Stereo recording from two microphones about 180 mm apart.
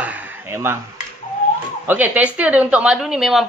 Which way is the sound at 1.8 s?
10° right (ahead or behind).